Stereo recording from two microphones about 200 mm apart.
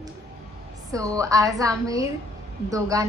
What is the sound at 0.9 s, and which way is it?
A woman's voice, 15° right (ahead or behind).